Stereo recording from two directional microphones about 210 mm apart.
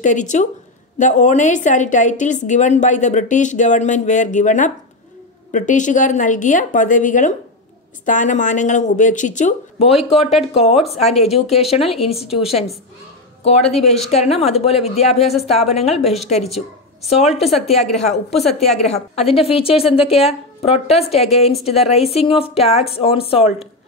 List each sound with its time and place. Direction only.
0.0 s a woman's voice: 35° left (ahead or behind)